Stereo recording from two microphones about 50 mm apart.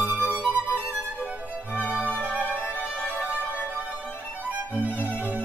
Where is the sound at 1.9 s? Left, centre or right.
Right.